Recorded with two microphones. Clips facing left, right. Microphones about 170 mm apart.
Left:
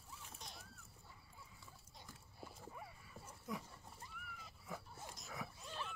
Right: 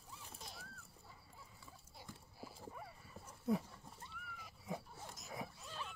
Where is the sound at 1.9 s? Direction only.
5° right (ahead or behind).